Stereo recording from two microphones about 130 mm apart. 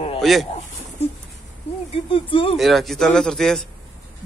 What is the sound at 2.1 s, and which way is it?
Speech, 45° left (ahead or behind).